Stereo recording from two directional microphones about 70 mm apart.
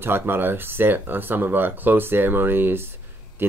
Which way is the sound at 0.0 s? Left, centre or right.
Right.